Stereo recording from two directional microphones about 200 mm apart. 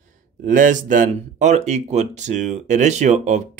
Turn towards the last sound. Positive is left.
turn(degrees=-35)  # may be behind; listen again after turning